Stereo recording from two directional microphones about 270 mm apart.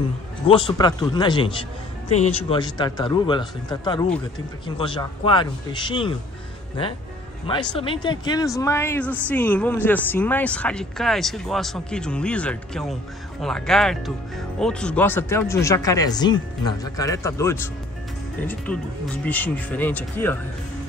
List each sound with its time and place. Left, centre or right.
0.5 s speech: centre
7.7 s speech: centre
18.7 s speech: centre